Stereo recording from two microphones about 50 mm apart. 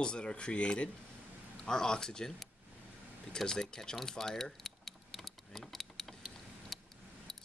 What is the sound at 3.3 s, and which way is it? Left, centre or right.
Keys jangling, centre.